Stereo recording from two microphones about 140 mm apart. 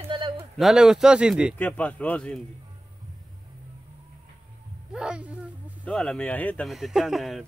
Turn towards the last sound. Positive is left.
turn(degrees=0)  # may be behind; listen again after turning